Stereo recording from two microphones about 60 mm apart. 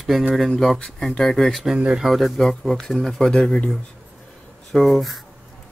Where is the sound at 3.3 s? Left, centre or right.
Centre.